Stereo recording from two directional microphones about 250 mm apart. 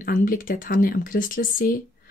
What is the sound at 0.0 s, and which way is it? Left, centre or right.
Speech, left.